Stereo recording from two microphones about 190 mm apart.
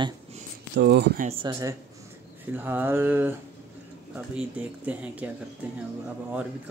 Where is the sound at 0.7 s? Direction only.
60° right (ahead or behind).